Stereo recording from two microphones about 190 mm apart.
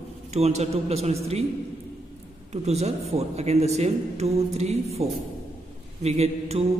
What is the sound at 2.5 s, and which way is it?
A man's voice, 35° right (ahead or behind).